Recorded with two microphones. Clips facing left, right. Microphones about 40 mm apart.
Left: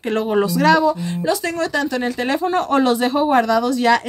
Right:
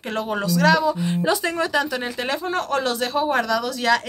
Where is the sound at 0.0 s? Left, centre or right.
Centre.